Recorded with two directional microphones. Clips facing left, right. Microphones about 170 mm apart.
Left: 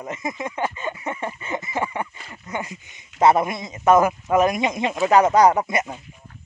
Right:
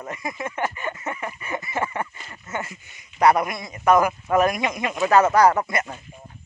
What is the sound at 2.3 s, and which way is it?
A man's voice, 15° left (ahead or behind).